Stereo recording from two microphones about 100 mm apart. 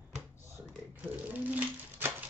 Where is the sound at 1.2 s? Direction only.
15° right (ahead or behind).